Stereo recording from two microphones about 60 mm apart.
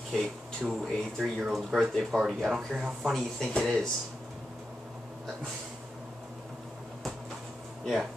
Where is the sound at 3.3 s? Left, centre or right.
Centre.